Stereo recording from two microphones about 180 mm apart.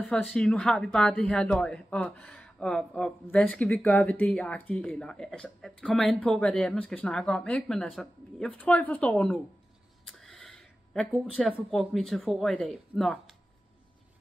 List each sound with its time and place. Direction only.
0.0 s a woman's voice: centre (ahead or behind)